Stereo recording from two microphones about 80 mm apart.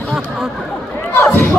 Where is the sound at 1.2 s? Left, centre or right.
Left.